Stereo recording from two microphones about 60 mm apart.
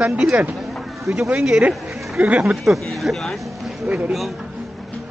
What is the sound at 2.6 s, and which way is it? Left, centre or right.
Speech, centre.